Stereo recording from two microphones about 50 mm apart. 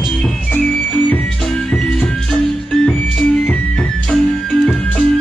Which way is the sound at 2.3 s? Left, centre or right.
Centre.